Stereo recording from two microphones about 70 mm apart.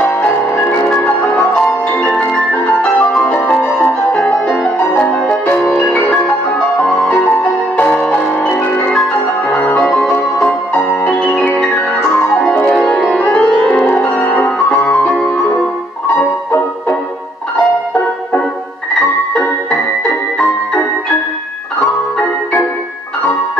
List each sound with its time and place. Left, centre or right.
0.0 s music: left
2.0 s music: centre
7.7 s music: centre
8.5 s music: centre
11.1 s music: centre
14.2 s piano: left
19.3 s music: centre